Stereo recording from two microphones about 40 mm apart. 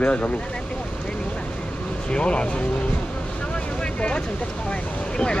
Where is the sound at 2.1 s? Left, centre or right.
Left.